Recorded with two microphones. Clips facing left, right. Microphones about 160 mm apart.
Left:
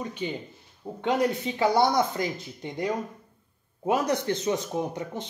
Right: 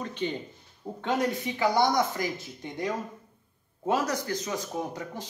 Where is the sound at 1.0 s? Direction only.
25° left (ahead or behind).